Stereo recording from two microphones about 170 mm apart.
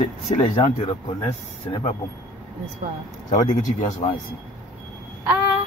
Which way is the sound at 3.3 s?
50° left (ahead or behind).